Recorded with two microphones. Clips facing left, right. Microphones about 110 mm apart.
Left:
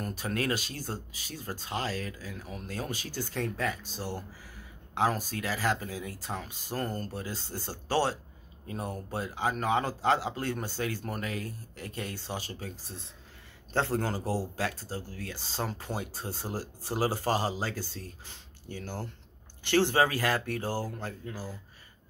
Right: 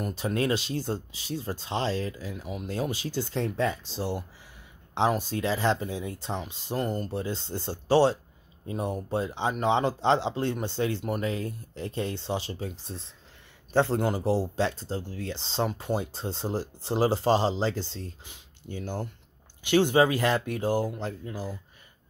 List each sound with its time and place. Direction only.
0.0 s speech: 25° right (ahead or behind)